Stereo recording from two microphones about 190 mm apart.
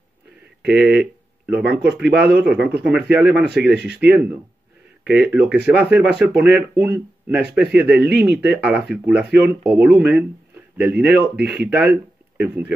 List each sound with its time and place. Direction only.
0.7 s speech: 10° right (ahead or behind)
2.1 s speech: 60° right (ahead or behind)
2.4 s speech: 5° right (ahead or behind)
11.4 s speech: 60° right (ahead or behind)
11.7 s speech: 10° right (ahead or behind)